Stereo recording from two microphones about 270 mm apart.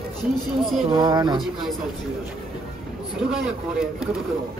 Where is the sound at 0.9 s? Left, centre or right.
Centre.